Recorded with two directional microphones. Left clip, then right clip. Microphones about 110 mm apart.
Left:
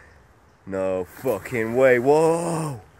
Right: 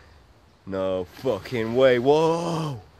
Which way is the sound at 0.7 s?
35° right (ahead or behind).